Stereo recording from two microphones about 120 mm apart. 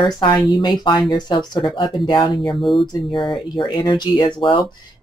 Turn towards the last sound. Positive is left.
turn(degrees=45)  # may be behind; listen again after turning